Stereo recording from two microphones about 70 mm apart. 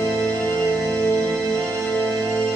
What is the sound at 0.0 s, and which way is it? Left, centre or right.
Music, centre.